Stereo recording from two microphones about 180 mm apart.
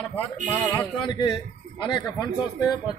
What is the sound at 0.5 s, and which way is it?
Speech, 15° left (ahead or behind).